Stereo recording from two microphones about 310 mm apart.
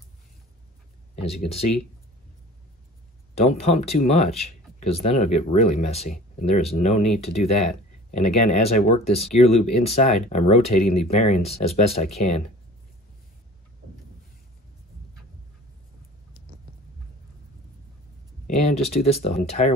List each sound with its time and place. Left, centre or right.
1.2 s speech: centre
3.3 s speech: centre
18.6 s speech: left